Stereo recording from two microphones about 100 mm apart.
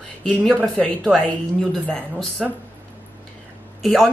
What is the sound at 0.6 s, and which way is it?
Speech, 10° left (ahead or behind).